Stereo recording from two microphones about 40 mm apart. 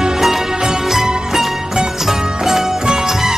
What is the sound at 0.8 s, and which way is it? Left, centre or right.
Music, centre.